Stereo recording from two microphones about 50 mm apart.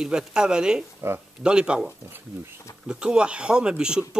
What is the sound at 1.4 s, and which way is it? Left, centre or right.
Speech, centre.